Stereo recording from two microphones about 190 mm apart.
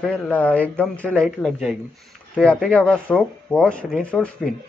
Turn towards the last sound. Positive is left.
turn(degrees=5)  # may be behind; listen again after turning